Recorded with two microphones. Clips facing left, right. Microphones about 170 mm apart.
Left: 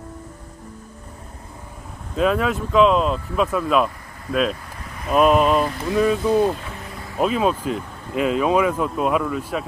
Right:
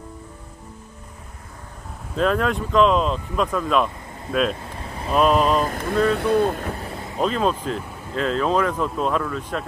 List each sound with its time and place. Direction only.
2.1 s speech: 5° left (ahead or behind)
4.8 s a sound: 30° right (ahead or behind)
5.1 s speech: 5° left (ahead or behind)
6.1 s speech: 60° right (ahead or behind)
7.2 s speech: 5° left (ahead or behind)